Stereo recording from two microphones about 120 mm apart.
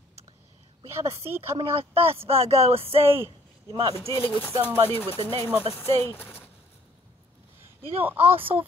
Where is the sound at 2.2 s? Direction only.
55° right (ahead or behind).